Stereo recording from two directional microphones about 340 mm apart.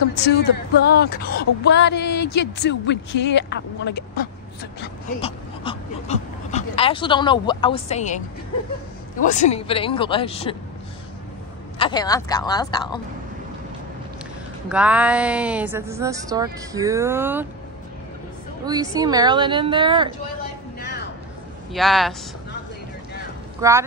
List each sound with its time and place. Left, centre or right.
0.1 s speech: left
5.2 s speech: centre
9.2 s speech: left
11.8 s speech: centre
14.7 s a woman's voice: centre
18.7 s a woman's voice: centre
21.7 s a woman's voice: centre
23.6 s a woman's voice: centre